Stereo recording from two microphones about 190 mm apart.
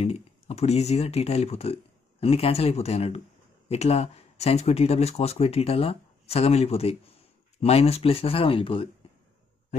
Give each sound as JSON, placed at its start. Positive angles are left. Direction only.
{"t": 0.0, "sound": "speech", "side_deg": 35}